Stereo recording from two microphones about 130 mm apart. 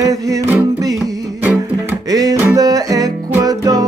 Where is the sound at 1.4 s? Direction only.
10° right (ahead or behind).